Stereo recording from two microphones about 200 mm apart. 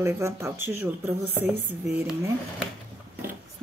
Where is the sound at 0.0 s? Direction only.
15° right (ahead or behind).